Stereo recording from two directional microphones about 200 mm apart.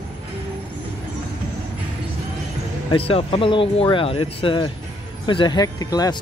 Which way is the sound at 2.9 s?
30° left (ahead or behind).